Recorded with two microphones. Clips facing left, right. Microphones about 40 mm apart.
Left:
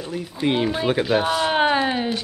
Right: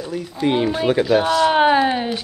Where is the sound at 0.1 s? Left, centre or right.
Centre.